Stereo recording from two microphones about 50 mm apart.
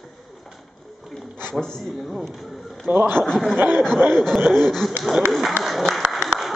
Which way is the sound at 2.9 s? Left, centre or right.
Right.